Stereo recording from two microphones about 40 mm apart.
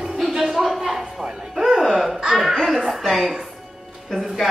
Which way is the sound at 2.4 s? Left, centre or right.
Centre.